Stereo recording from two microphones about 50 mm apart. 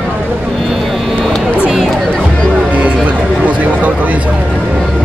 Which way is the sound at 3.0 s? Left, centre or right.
Right.